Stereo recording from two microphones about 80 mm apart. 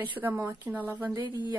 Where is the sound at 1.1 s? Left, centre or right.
Right.